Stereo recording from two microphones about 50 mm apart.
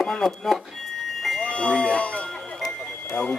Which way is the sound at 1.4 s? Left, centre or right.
Left.